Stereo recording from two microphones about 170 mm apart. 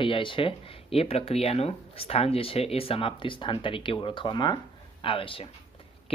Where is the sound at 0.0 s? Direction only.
30° left (ahead or behind).